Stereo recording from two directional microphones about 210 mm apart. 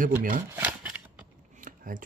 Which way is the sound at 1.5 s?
40° right (ahead or behind).